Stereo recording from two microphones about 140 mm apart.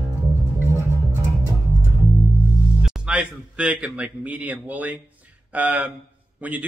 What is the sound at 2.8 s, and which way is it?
Speech, 5° right (ahead or behind).